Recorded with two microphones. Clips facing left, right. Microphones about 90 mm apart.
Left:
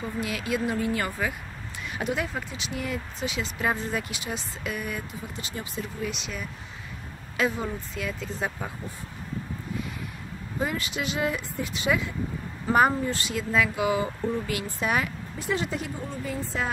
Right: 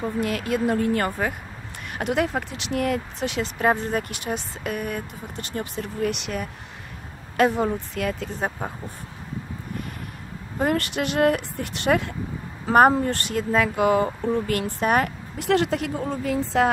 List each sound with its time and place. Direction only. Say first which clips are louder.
0.0 s speech: right 5 dB; 50° right (ahead or behind)
8.5 s speech: right 4 dB; 30° right (ahead or behind)
10.6 s speech: right 6 dB; 60° right (ahead or behind)
15.3 s a woman's voice: right 8 dB; 75° right (ahead or behind)